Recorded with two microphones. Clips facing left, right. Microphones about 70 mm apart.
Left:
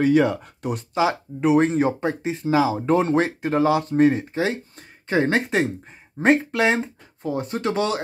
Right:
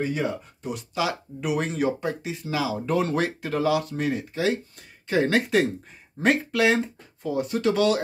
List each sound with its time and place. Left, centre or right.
0.0 s speech: left
0.9 s speech: left